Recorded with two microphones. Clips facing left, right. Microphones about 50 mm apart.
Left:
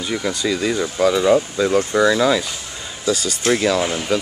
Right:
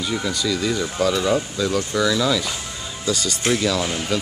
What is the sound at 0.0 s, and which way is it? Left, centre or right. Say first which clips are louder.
Speech: left 2 dB; centre.